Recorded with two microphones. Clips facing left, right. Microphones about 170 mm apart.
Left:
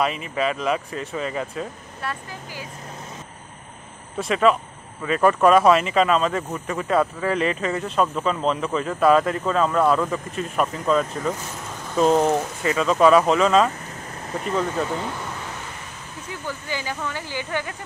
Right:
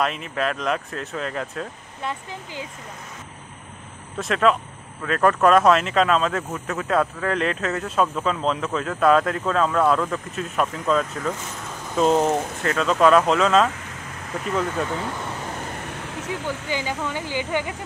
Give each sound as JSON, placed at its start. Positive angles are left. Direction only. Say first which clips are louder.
{"t": 0.0, "sound": "speech", "louder": "left 1 dB", "side_deg": 0}
{"t": 2.0, "sound": "speech", "louder": "right 2 dB", "side_deg": -20}
{"t": 4.2, "sound": "speech", "louder": "left 1 dB", "side_deg": 0}
{"t": 15.6, "sound": "a sound", "louder": "right 6 dB", "side_deg": -65}
{"t": 16.6, "sound": "speech", "louder": "right 2 dB", "side_deg": -20}